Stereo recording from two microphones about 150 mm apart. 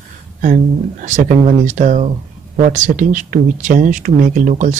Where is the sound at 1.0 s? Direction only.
55° right (ahead or behind).